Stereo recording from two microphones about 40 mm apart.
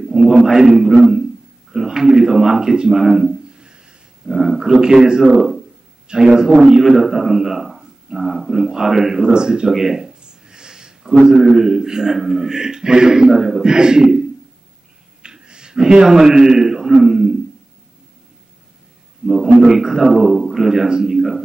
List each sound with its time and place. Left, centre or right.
0.1 s a man's voice: centre
4.3 s a man's voice: centre
15.2 s a sound: right
19.2 s a man's voice: centre